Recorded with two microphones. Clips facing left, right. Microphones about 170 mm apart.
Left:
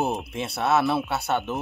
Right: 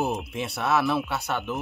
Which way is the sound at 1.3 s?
35° left (ahead or behind).